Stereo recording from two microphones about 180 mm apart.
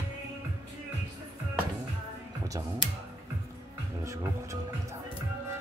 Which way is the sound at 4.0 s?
15° right (ahead or behind).